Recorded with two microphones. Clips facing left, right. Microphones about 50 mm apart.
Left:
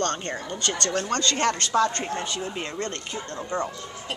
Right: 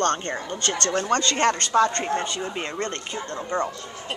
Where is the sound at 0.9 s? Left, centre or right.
Centre.